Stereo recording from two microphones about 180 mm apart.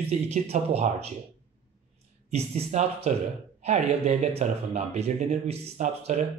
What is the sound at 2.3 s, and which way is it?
Speech, 35° right (ahead or behind).